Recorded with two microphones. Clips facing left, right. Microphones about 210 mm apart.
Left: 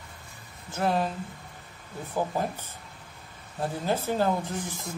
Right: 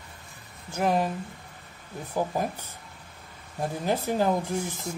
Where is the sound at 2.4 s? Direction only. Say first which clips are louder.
Right 1 dB; 15° right (ahead or behind).